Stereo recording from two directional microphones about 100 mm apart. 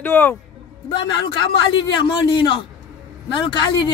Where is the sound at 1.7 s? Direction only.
50° left (ahead or behind).